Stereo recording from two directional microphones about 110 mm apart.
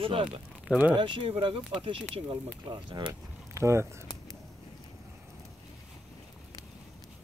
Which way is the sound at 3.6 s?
25° right (ahead or behind).